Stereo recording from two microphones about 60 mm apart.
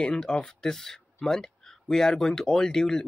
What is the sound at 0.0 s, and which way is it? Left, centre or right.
Speech, centre.